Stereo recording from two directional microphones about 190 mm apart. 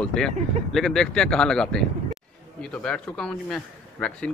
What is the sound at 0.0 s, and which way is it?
Speech, 5° left (ahead or behind).